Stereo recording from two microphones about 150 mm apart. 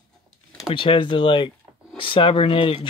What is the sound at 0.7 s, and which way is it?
Speech, 35° left (ahead or behind).